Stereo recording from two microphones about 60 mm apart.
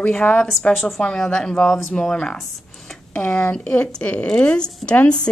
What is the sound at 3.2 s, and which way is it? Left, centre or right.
A woman's voice, left.